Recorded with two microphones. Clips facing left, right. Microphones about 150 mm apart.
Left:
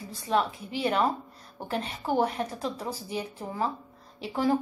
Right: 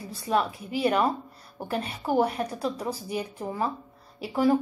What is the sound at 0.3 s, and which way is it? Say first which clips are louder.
A woman's voice: right 1 dB; 10° right (ahead or behind).